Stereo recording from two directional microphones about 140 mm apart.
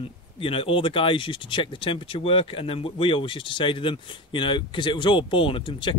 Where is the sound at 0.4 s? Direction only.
40° left (ahead or behind).